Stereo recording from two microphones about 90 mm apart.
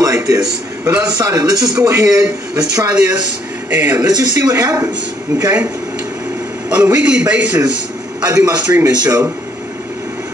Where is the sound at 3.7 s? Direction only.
15° right (ahead or behind).